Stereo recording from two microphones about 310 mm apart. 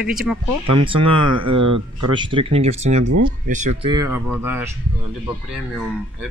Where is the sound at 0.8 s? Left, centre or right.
Centre.